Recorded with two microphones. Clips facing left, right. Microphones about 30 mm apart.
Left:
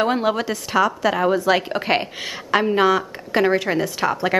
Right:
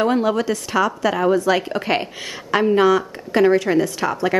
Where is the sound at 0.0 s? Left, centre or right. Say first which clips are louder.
Right 2 dB; centre.